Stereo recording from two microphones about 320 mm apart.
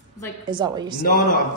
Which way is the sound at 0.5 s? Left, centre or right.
Centre.